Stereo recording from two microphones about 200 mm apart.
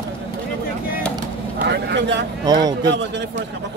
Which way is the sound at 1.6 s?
55° right (ahead or behind).